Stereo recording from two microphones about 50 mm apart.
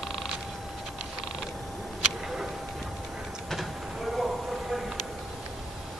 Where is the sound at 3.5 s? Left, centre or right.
Centre.